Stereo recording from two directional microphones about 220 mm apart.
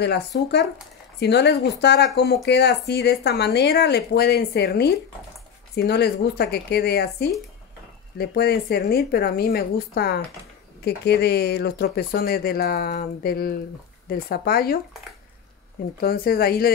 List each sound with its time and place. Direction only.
0.0 s speech: 50° left (ahead or behind)
16.0 s speech: 45° left (ahead or behind)